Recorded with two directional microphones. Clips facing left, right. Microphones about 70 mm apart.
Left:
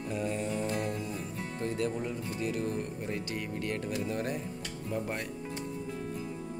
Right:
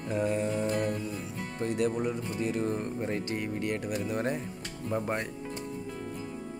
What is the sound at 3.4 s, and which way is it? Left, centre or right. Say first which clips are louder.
Speech: right 3 dB; right.